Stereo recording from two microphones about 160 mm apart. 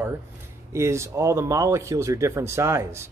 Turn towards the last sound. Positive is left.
turn(degrees=-15)  # may be behind; listen again after turning